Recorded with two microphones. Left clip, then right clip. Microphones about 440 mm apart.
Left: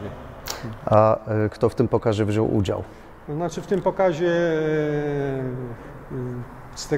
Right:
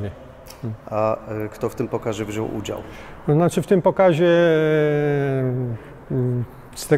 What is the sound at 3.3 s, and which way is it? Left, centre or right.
A man's voice, right.